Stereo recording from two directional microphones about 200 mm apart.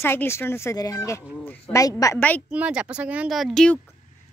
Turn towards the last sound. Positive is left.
turn(degrees=0)  # may be behind; listen again after turning